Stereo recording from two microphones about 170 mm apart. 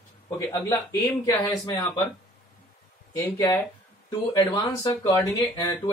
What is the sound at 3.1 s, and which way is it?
Speech, 20° left (ahead or behind).